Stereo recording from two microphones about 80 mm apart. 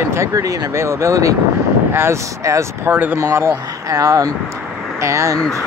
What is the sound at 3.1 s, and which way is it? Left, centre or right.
Speech, right.